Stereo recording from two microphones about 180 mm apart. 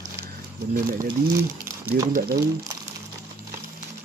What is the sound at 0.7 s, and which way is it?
Speech, 50° right (ahead or behind).